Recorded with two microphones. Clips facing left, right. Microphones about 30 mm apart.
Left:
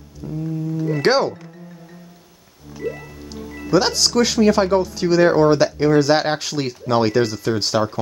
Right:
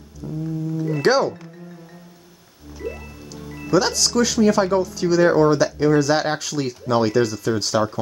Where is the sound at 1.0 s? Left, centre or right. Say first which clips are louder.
Even; left.